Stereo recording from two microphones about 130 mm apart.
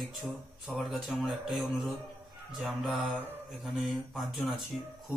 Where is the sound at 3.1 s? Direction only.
15° right (ahead or behind).